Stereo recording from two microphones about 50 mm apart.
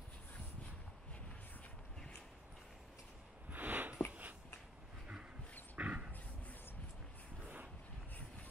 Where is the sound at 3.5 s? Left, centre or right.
Right.